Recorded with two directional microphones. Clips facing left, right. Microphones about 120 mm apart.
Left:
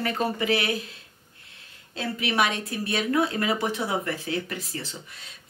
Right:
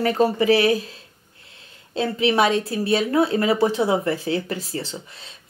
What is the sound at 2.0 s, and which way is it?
Speech, 30° right (ahead or behind).